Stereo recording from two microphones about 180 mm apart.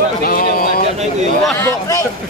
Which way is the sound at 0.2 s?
55° left (ahead or behind).